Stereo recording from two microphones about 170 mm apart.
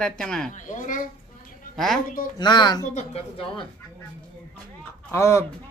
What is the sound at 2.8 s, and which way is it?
Speech, 35° left (ahead or behind).